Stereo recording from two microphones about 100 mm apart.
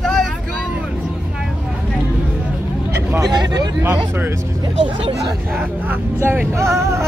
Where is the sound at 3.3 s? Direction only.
45° right (ahead or behind).